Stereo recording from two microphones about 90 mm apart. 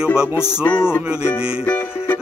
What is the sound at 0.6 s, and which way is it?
Speech, 25° left (ahead or behind).